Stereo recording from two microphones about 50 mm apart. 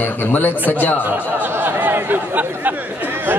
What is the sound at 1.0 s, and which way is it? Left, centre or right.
Speech, right.